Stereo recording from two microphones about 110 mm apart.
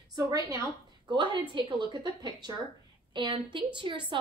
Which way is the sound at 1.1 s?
45° right (ahead or behind).